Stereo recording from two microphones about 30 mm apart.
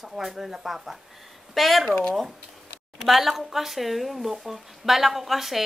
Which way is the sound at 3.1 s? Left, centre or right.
Centre.